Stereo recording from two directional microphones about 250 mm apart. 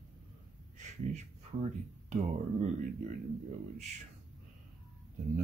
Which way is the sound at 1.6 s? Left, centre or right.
Right.